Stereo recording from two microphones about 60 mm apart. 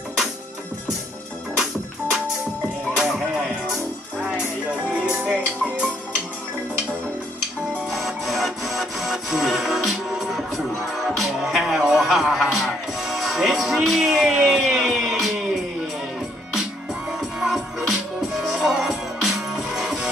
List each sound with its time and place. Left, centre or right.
3.0 s music: centre
5.2 s music: centre
7.9 s music: centre
17.2 s music: centre